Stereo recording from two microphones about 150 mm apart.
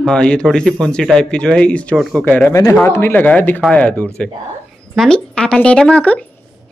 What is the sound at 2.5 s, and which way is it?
A man's voice, 20° left (ahead or behind).